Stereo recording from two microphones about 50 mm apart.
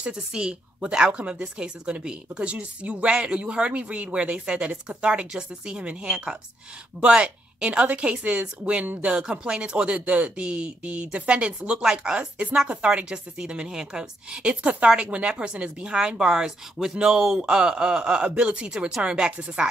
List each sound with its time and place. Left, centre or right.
0.0 s speech: centre
14.4 s a woman's voice: right